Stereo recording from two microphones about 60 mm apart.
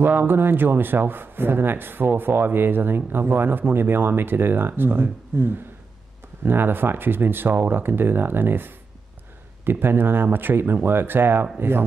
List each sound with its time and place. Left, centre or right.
0.0 s speech: right